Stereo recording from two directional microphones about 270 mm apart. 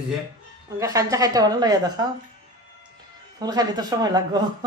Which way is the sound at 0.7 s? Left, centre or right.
Centre.